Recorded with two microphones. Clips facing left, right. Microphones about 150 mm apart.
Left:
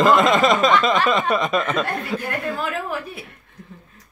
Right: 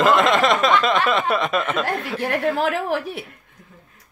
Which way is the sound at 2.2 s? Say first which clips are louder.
Right 5 dB; 80° right.